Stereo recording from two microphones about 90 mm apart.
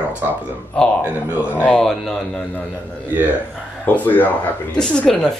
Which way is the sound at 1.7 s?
Centre (ahead or behind).